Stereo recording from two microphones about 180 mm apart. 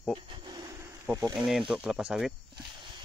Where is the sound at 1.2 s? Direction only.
25° right (ahead or behind).